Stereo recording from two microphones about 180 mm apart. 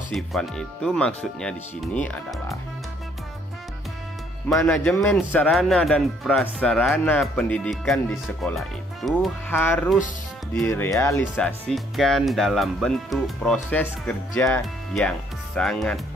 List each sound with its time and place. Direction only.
0.1 s speech: centre (ahead or behind)
4.6 s speech: 5° left (ahead or behind)
9.5 s speech: 10° left (ahead or behind)